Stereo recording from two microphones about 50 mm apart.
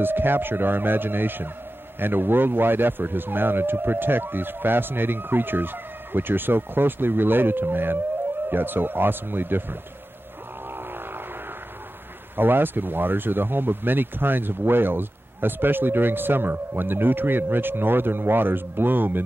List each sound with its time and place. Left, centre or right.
0.0 s speech: right
10.7 s vehicle: right
12.4 s speech: right